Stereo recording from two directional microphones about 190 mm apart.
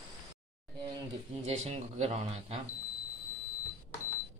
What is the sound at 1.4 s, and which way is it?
A man's voice, 35° right (ahead or behind).